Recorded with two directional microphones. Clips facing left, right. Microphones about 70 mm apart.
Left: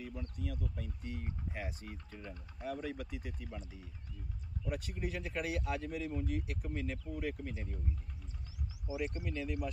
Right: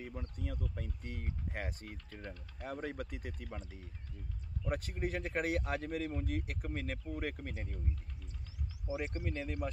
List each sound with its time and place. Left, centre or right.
0.4 s speech: right
4.6 s speech: right
8.9 s speech: right